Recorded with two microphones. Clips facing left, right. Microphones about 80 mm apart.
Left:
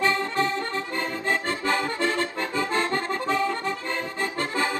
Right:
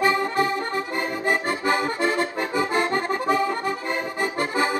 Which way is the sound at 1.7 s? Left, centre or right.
Centre.